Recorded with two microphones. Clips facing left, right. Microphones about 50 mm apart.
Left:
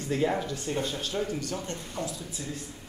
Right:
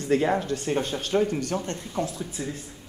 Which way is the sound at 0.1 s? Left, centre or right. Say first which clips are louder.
Right 5 dB; right.